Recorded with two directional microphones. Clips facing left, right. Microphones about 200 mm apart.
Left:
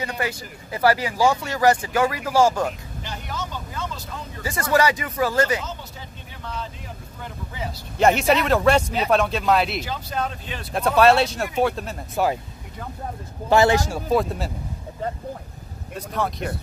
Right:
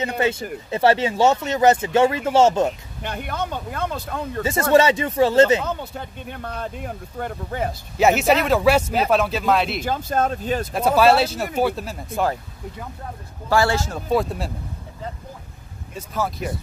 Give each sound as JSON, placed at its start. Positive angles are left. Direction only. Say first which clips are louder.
{"t": 0.2, "sound": "speech", "louder": "right 6 dB", "side_deg": -25}
{"t": 3.0, "sound": "speech", "louder": "right 7 dB", "side_deg": -55}
{"t": 4.4, "sound": "speech", "louder": "right 5 dB", "side_deg": -25}
{"t": 5.7, "sound": "speech", "louder": "right 8 dB", "side_deg": -60}
{"t": 8.0, "sound": "speech", "louder": "right 1 dB", "side_deg": 0}
{"t": 9.8, "sound": "speech", "louder": "right 5 dB", "side_deg": -50}
{"t": 10.7, "sound": "speech", "louder": "even", "side_deg": 0}
{"t": 13.5, "sound": "speech", "louder": "left 2 dB", "side_deg": 20}
{"t": 14.0, "sound": "speech", "louder": "even", "side_deg": 0}
{"t": 15.9, "sound": "speech", "louder": "even", "side_deg": 0}